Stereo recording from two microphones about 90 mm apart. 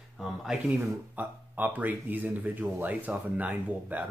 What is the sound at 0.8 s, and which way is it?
Speech, 20° right (ahead or behind).